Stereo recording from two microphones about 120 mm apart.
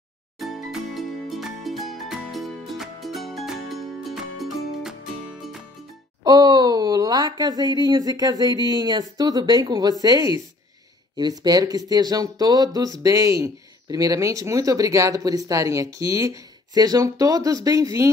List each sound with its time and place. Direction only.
0.4 s music: centre (ahead or behind)
6.2 s speech: 35° right (ahead or behind)